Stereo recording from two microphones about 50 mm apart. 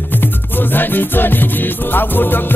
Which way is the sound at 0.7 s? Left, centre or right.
Left.